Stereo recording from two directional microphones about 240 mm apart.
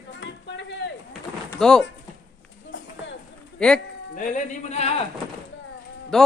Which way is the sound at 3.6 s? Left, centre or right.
Centre.